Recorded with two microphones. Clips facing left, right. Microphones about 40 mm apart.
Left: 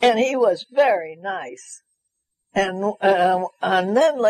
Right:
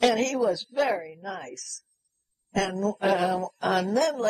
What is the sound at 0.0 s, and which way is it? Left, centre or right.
A woman's voice, left.